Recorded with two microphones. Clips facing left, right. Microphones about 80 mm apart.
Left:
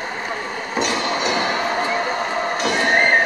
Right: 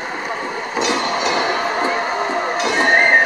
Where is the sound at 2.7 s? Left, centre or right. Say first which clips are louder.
Right 4 dB; right.